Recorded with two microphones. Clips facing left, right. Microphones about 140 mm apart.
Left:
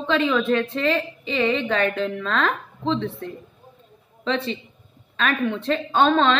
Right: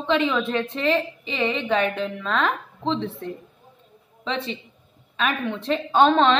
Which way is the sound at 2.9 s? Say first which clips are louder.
Left 1 dB; 30° right (ahead or behind).